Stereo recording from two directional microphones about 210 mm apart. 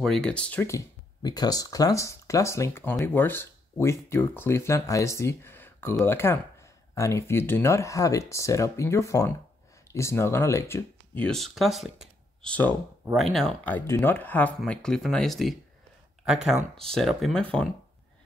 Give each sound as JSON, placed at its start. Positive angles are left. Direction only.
{"t": 0.0, "sound": "speech", "side_deg": 5}
{"t": 16.5, "sound": "speech", "side_deg": -25}
{"t": 16.9, "sound": "speech", "side_deg": 0}